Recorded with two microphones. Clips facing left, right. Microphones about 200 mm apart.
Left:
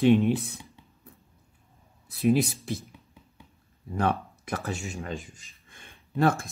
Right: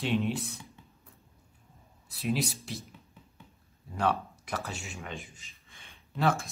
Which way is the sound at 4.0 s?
55° left (ahead or behind).